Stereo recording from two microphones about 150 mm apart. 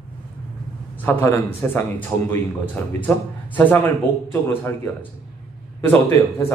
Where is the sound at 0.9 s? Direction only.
15° left (ahead or behind).